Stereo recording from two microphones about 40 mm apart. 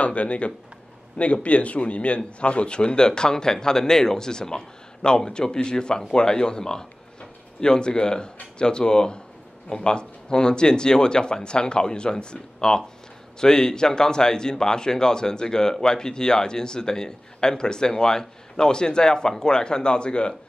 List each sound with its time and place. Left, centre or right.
0.0 s a man's voice: left